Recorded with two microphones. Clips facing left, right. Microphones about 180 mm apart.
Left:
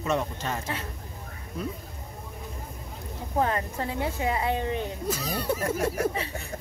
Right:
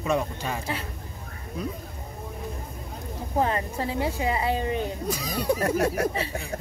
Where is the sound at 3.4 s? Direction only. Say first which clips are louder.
Right 1 dB; 15° right (ahead or behind).